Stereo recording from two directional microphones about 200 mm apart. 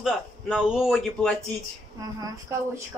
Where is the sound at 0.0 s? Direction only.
5° right (ahead or behind).